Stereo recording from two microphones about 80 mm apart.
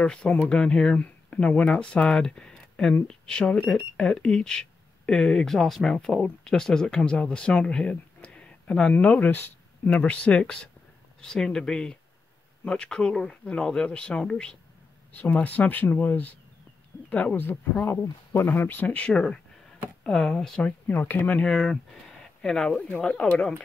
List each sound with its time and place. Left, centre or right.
0.0 s speech: centre
20.6 s speech: left
21.5 s speech: centre